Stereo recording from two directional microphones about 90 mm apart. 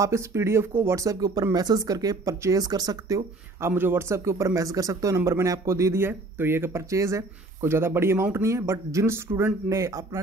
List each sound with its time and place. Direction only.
0.0 s speech: 30° right (ahead or behind)
3.6 s speech: 25° right (ahead or behind)